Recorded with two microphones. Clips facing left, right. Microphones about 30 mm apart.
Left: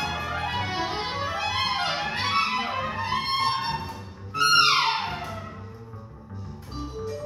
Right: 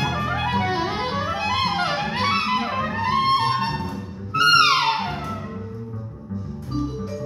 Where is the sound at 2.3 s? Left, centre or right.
Right.